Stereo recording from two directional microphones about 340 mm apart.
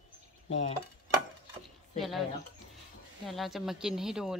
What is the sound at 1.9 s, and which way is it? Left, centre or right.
Speech, centre.